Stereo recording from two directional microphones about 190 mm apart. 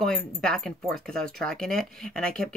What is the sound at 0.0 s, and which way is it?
Speech, 5° left (ahead or behind).